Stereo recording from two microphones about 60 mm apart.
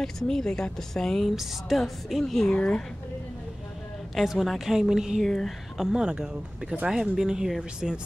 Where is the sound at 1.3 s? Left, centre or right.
Centre.